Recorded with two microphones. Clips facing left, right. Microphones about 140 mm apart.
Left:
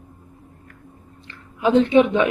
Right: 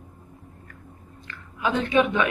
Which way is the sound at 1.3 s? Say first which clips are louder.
Left 7 dB; 25° left (ahead or behind).